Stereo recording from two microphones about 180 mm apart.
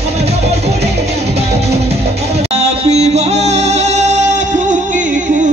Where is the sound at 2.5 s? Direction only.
35° right (ahead or behind).